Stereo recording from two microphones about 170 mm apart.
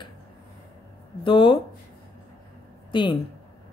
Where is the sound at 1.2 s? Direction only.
30° left (ahead or behind).